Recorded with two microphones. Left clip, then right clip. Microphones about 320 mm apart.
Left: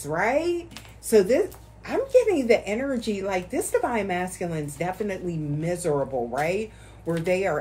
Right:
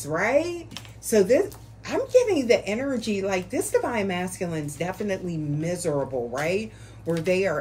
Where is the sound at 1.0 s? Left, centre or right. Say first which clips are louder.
Even; centre.